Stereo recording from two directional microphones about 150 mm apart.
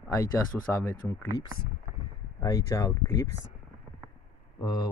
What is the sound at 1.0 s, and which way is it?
Speech, centre (ahead or behind).